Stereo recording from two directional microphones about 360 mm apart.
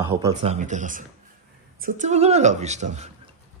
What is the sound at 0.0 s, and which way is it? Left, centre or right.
A woman's voice, centre.